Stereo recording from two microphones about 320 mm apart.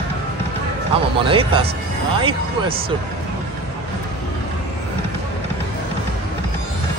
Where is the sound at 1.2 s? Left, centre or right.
Centre.